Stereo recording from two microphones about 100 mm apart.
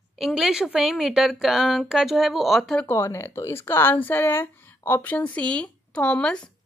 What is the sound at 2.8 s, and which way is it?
Speech, 25° left (ahead or behind).